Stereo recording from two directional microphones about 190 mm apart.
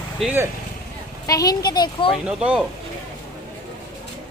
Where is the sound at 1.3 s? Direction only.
20° left (ahead or behind).